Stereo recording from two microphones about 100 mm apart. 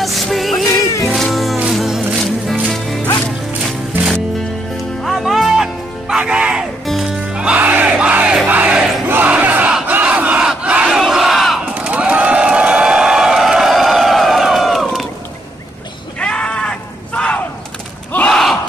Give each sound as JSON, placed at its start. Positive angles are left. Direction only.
{"t": 0.0, "sound": "music", "side_deg": 0}
{"t": 4.7, "sound": "music", "side_deg": 0}
{"t": 8.5, "sound": "crowd", "side_deg": -15}
{"t": 11.7, "sound": "a sound", "side_deg": -10}
{"t": 16.2, "sound": "a sound", "side_deg": 10}
{"t": 18.3, "sound": "crowd", "side_deg": 0}